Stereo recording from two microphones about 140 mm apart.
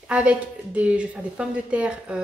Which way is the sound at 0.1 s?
10° right (ahead or behind).